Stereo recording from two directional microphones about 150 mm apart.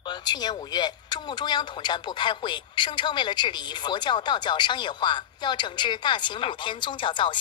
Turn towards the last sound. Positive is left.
turn(degrees=35)  # may be behind; listen again after turning